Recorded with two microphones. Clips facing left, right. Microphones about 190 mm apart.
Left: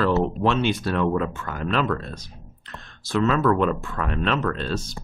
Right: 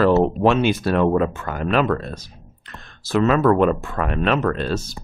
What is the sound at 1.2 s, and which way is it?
Speech, 65° right (ahead or behind).